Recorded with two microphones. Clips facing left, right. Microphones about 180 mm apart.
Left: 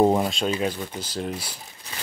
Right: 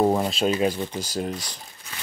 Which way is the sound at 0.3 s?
5° right (ahead or behind).